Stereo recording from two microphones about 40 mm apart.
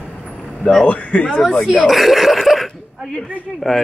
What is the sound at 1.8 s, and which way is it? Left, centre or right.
Speech, centre.